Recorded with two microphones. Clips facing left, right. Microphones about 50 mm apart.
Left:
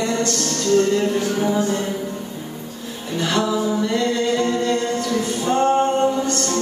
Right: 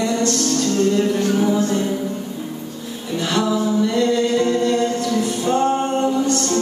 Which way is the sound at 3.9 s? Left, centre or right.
Left.